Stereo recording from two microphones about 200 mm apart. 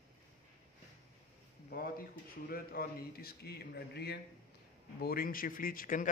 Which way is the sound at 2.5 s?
50° left (ahead or behind).